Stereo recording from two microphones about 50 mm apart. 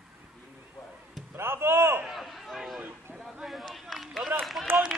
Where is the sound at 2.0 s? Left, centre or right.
Centre.